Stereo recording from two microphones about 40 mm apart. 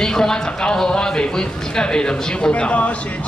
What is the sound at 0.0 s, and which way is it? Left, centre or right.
Speech, centre.